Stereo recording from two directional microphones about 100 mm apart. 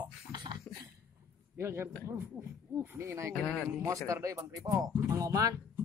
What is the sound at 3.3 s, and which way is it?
Speech, 10° left (ahead or behind).